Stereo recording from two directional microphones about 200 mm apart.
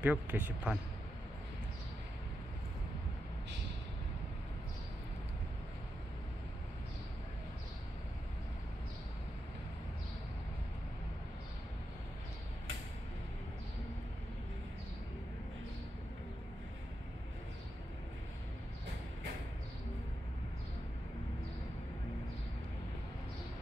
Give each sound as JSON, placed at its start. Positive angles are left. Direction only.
{"t": 0.0, "sound": "a man's voice", "side_deg": -5}